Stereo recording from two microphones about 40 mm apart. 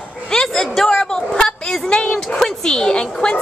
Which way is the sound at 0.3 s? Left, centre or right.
Centre.